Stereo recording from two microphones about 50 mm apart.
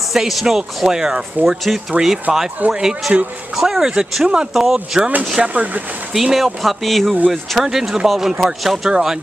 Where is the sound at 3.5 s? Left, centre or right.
Centre.